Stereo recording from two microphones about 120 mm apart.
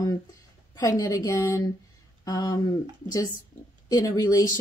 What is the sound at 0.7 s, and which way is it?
A woman's voice, 30° left (ahead or behind).